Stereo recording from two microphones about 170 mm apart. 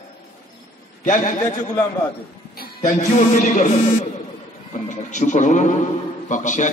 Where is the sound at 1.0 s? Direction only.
45° left (ahead or behind).